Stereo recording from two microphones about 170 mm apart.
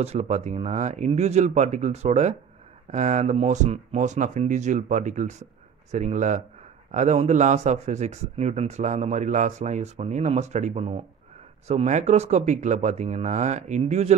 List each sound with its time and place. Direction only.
0.0 s speech: 40° right (ahead or behind)